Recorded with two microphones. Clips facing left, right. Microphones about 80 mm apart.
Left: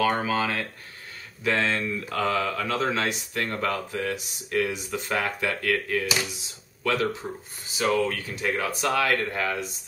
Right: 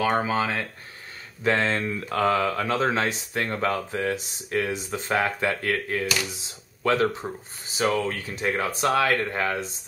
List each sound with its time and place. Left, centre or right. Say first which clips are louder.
0.0 s speech: right 1 dB; right